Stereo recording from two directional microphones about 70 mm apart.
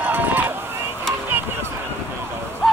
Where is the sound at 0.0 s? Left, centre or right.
Right.